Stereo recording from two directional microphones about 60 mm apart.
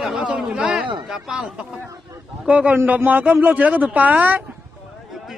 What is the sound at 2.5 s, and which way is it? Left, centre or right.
Speech, right.